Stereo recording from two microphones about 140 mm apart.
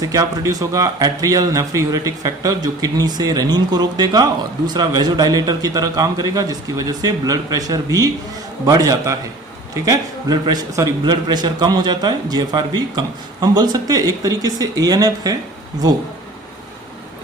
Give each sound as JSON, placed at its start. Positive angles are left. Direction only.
{"t": 0.0, "sound": "a man's voice", "side_deg": -25}